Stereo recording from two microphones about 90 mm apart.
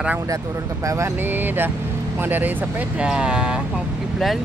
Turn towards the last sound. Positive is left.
turn(degrees=-10)  # may be behind; listen again after turning